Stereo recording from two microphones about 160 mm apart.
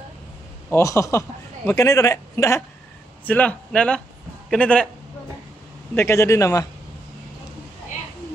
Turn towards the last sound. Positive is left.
turn(degrees=20)  # may be behind; listen again after turning